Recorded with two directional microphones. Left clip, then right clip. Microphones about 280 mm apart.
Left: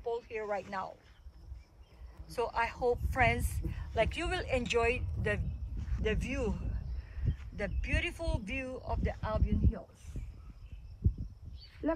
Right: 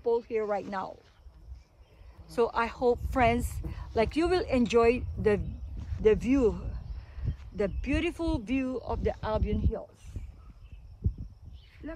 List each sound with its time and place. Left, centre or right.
0.0 s a sound: right
2.3 s speech: right
7.5 s speech: right